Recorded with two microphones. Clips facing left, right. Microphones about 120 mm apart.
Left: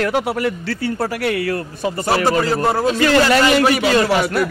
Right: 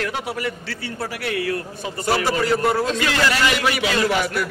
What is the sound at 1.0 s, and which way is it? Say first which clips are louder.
Speech: left 3 dB; 55° left (ahead or behind).